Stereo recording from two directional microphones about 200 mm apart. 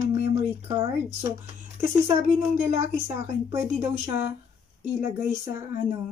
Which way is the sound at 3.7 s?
35° right (ahead or behind).